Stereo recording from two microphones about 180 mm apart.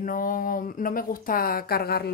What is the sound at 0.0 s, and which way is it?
A woman's voice, 50° left (ahead or behind).